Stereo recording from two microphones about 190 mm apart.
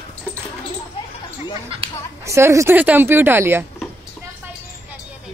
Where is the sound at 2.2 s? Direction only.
15° right (ahead or behind).